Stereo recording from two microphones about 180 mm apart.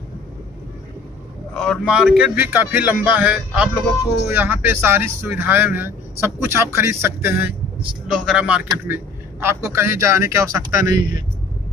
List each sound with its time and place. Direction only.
1.5 s speech: 5° left (ahead or behind); by 11.1 s 20° right (ahead or behind)